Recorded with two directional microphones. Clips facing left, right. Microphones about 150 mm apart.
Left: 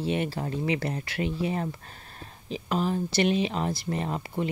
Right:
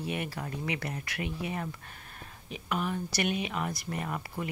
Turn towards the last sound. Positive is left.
turn(degrees=25)  # may be behind; listen again after turning